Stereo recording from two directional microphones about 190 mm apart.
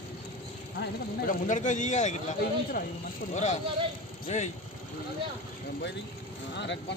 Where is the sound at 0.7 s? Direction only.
45° left (ahead or behind).